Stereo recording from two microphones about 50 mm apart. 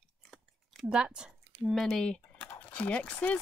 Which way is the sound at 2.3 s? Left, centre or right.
Left.